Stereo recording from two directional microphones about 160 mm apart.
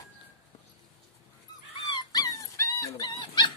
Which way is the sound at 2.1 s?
20° left (ahead or behind).